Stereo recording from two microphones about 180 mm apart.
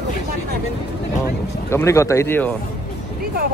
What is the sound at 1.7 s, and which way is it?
Speech, 15° left (ahead or behind).